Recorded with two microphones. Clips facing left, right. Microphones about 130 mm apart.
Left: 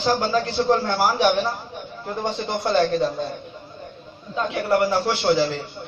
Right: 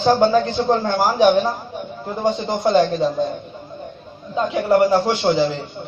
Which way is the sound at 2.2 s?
15° right (ahead or behind).